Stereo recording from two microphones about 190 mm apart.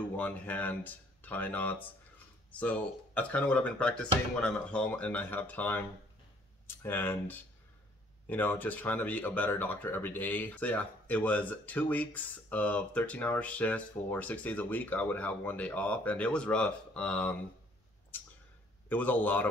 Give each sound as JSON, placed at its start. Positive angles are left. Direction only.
{"t": 0.1, "sound": "speech", "side_deg": 5}
{"t": 18.1, "sound": "a sound", "side_deg": 10}
{"t": 18.9, "sound": "speech", "side_deg": 10}